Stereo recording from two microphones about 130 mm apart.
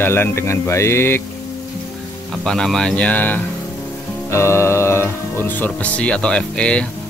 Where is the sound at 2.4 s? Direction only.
5° left (ahead or behind).